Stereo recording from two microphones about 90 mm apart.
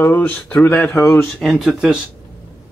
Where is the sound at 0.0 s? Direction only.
20° left (ahead or behind).